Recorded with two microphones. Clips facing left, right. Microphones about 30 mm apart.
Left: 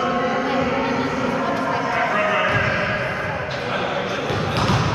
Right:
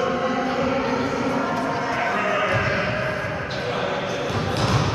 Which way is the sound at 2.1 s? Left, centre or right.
Left.